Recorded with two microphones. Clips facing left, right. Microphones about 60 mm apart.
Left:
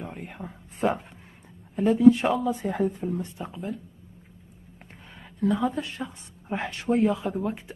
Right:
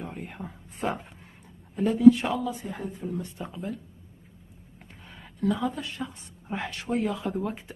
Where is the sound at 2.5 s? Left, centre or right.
Left.